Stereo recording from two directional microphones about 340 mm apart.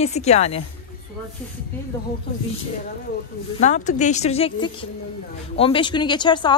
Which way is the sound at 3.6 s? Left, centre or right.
Left.